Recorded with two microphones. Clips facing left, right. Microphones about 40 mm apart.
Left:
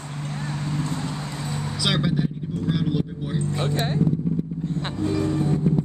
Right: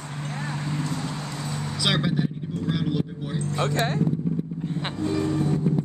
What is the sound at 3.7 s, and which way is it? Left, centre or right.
Speech, right.